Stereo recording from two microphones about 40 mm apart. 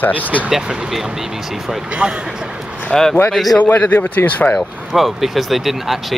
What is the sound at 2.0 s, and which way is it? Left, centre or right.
Speech, right.